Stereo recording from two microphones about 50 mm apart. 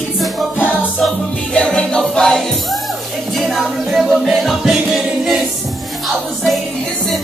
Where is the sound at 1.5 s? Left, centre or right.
Centre.